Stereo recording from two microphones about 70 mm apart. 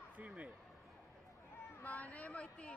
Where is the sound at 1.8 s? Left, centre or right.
Left.